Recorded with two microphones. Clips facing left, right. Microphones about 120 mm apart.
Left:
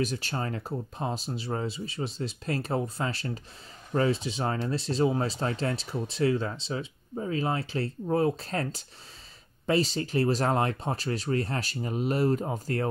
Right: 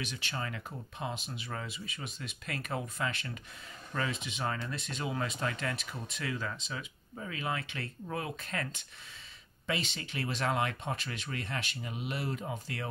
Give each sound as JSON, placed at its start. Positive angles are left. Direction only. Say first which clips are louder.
{"t": 0.0, "sound": "speech", "louder": "left 8 dB", "side_deg": 40}